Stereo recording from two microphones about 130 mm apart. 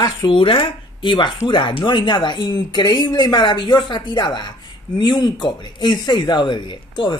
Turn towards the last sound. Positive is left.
turn(degrees=40)  # may be behind; listen again after turning